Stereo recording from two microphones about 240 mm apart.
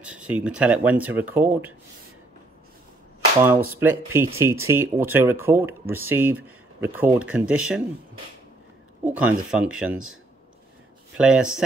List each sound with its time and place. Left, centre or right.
0.0 s speech: centre
3.3 s speech: centre
9.0 s speech: centre
11.1 s speech: centre